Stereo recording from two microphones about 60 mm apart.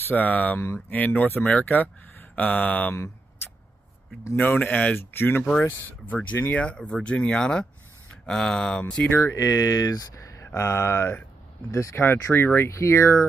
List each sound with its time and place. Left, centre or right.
0.1 s speech: left
4.4 s speech: left
4.9 s speech: left; by 9.0 s centre
9.1 s speech: left
10.4 s speech: left
12.7 s speech: left